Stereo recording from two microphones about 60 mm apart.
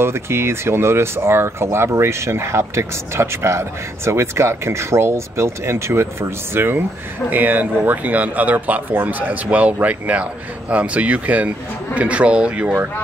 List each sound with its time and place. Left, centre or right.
0.0 s speech: right
6.5 s speech: right